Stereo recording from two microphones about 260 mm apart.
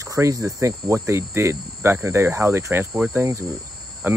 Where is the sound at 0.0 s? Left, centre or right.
Centre.